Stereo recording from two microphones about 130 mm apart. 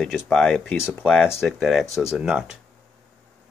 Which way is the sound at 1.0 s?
10° left (ahead or behind).